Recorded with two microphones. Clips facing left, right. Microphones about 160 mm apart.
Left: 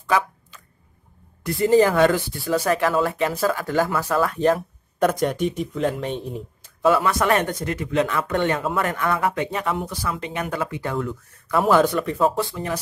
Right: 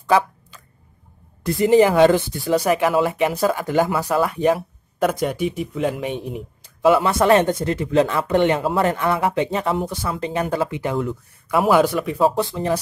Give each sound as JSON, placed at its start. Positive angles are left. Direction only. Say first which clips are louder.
{"t": 0.0, "sound": "a sound", "louder": "right 4 dB", "side_deg": -30}
{"t": 1.6, "sound": "speech", "louder": "right 3 dB", "side_deg": -15}
{"t": 11.5, "sound": "speech", "louder": "right 1 dB", "side_deg": -5}